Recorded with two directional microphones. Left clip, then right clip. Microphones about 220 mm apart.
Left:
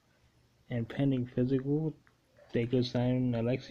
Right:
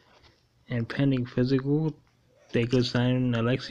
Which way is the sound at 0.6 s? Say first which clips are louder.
Right 5 dB; 10° right (ahead or behind).